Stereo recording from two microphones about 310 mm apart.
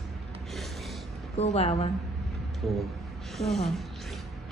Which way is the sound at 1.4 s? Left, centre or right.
Centre.